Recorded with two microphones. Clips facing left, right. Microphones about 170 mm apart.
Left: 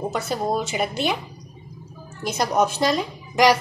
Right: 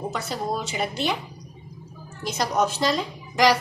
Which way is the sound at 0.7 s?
10° left (ahead or behind).